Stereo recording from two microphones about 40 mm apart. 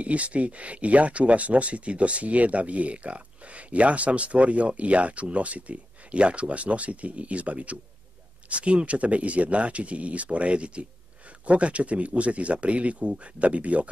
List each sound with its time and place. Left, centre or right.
0.0 s speech: right